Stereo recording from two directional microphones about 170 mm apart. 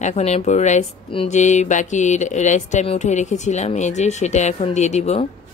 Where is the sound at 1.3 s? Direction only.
45° left (ahead or behind).